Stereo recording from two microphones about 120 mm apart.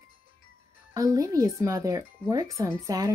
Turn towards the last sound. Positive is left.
turn(degrees=-30)  # may be behind; listen again after turning